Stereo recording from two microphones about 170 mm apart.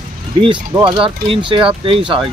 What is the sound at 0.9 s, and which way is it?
Speech, 30° right (ahead or behind).